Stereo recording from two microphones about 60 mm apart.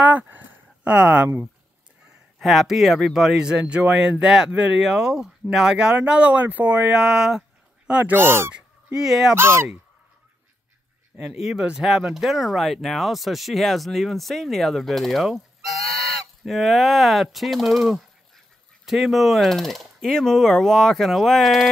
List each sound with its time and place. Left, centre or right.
0.0 s a sound: right
2.3 s speech: centre
3.4 s speech: centre
7.0 s a sound: centre
8.0 s speech: right
8.5 s fowl: centre
9.3 s speech: right
11.1 s speech: centre